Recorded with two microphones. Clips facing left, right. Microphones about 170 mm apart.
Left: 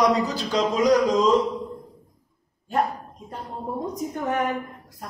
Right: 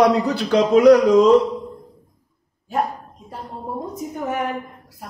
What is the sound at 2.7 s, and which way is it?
A woman's voice, centre (ahead or behind).